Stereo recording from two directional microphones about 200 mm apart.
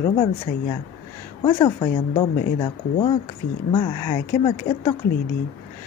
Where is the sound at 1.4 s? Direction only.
20° left (ahead or behind).